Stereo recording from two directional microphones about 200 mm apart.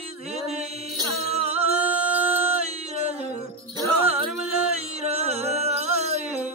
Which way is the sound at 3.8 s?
25° right (ahead or behind).